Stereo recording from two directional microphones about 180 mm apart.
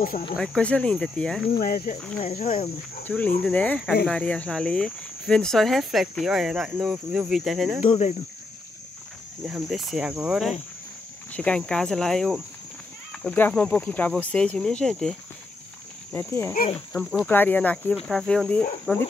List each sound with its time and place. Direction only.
0.4 s speech: 5° left (ahead or behind)
1.6 s speech: 55° left (ahead or behind)
2.1 s speech: 35° left (ahead or behind)
3.1 s speech: 10° left (ahead or behind)
7.9 s speech: 40° left (ahead or behind)
9.5 s speech: centre (ahead or behind)
16.1 s speech: 15° left (ahead or behind)
16.9 s speech: centre (ahead or behind)